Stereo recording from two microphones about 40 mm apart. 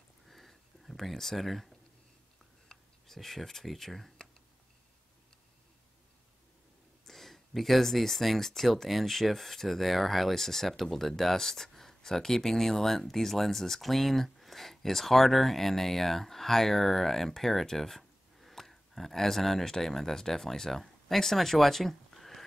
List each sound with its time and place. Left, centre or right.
0.3 s a sound: centre
2.7 s speech: centre
7.1 s speech: centre